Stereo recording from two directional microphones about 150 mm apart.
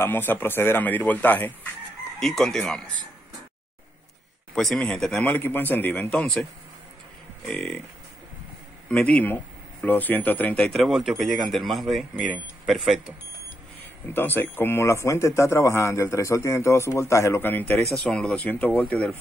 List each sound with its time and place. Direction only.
0.0 s speech: 15° left (ahead or behind)
4.6 s speech: 5° left (ahead or behind)
8.8 s speech: 5° left (ahead or behind)
14.1 s speech: 15° left (ahead or behind)